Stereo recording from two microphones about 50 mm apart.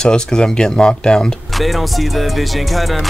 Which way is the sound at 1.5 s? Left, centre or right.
Centre.